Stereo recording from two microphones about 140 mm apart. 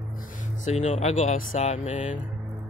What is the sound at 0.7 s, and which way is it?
Speech, 55° left (ahead or behind).